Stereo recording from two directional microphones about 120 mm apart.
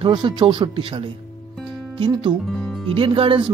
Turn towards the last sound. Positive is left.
turn(degrees=-45)  # may be behind; listen again after turning